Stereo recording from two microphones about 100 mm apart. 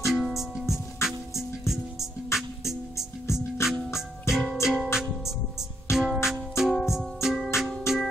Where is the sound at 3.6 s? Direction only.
30° left (ahead or behind).